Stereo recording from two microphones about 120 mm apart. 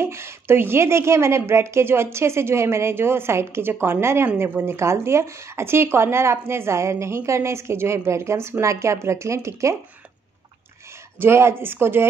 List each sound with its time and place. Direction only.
0.0 s a woman's voice: 20° right (ahead or behind)
11.1 s a woman's voice: 20° right (ahead or behind)